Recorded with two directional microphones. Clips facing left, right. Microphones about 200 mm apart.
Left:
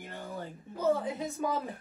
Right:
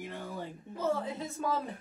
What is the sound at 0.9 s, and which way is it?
Speech, 15° left (ahead or behind).